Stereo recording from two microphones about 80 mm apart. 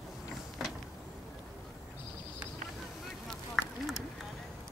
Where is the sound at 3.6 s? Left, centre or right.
Centre.